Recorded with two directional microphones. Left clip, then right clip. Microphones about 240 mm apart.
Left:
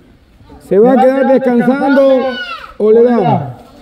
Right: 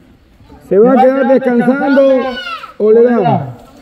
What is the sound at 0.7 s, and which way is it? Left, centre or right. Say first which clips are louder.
Speech: even; centre.